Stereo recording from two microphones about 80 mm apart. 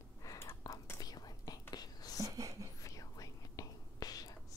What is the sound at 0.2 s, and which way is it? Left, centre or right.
Whispering, left.